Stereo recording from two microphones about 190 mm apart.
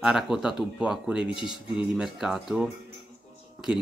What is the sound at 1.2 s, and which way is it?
Speech, 25° left (ahead or behind).